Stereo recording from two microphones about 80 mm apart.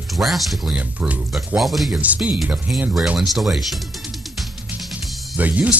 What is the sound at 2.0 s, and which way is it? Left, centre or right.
Speech, centre.